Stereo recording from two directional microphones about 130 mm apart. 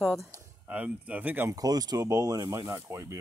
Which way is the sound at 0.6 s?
10° right (ahead or behind).